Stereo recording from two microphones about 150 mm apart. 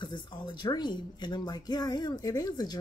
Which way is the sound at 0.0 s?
30° left (ahead or behind).